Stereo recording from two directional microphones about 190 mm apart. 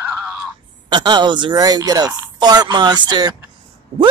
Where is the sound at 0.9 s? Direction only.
25° right (ahead or behind).